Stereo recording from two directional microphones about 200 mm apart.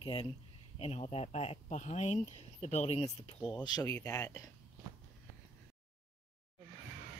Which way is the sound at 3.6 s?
20° left (ahead or behind).